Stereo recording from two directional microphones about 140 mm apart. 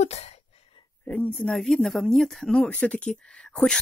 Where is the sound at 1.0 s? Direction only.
10° left (ahead or behind).